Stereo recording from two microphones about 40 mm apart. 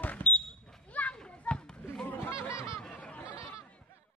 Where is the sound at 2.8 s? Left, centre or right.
Left.